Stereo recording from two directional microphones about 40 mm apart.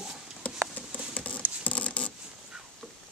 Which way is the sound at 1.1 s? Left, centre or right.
Left.